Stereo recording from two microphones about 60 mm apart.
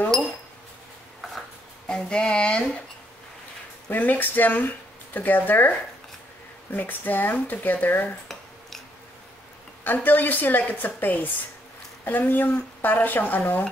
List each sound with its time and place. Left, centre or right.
1.9 s speech: centre
3.9 s speech: left
9.8 s speech: left